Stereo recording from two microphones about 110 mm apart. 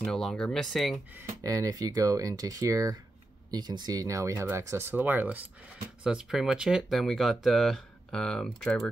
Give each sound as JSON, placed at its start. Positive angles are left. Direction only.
{"t": 0.0, "sound": "speech", "side_deg": 5}
{"t": 1.3, "sound": "speech", "side_deg": -30}
{"t": 6.0, "sound": "speech", "side_deg": -5}